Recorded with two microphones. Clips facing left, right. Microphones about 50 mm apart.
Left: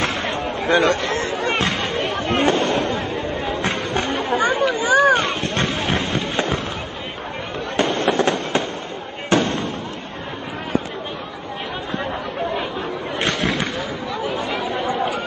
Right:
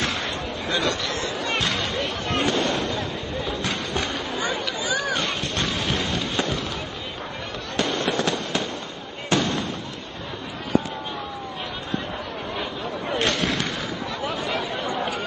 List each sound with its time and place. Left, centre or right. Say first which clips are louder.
0.0 s chatter: left 5 dB; left
2.1 s a sound: left 6 dB; left
7.7 s fireworks: left 5 dB; left